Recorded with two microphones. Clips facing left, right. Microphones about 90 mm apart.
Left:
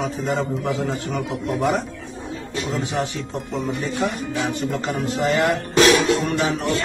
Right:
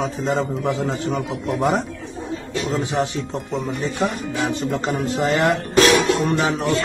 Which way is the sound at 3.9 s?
20° right (ahead or behind).